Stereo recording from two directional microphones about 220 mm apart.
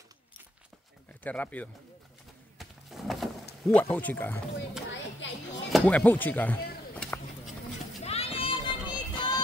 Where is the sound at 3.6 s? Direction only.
5° left (ahead or behind).